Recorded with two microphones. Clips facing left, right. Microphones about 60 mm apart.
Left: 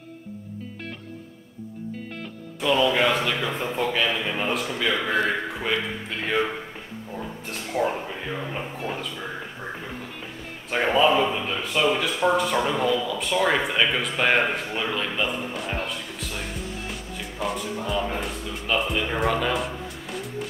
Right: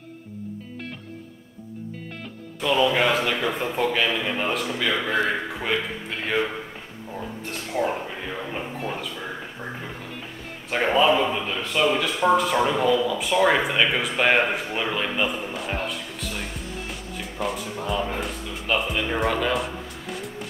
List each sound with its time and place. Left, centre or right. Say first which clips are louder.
2.6 s speech: even; centre
7.7 s speech: left 1 dB; centre
8.3 s speech: left 1 dB; centre
10.7 s speech: even; centre